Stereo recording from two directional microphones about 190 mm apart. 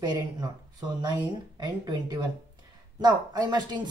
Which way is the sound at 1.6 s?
20° right (ahead or behind).